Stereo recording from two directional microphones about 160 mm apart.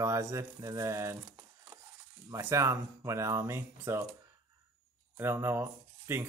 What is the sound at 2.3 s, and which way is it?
Speech, 20° right (ahead or behind).